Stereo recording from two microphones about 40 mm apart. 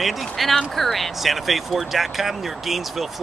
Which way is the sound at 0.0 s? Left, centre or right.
Centre.